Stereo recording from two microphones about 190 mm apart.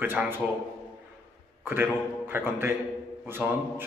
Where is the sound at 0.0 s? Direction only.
10° right (ahead or behind).